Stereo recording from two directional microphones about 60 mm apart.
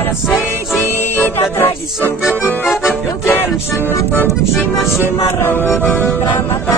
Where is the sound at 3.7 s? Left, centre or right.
Left.